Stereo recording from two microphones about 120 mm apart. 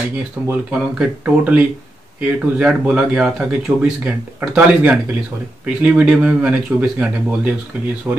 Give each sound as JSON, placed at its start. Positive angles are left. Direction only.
{"t": 0.5, "sound": "speech", "side_deg": -10}
{"t": 8.1, "sound": "speech", "side_deg": -20}